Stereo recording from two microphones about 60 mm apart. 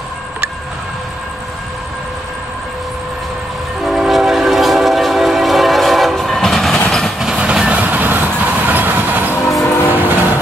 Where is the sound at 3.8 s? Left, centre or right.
Centre.